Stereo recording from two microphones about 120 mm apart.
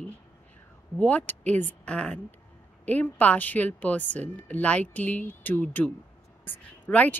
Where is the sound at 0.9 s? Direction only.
10° left (ahead or behind).